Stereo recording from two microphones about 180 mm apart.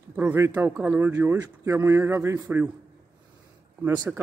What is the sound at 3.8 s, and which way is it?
Speech, 20° right (ahead or behind).